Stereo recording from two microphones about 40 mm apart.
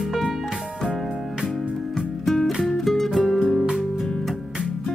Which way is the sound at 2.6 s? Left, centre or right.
Centre.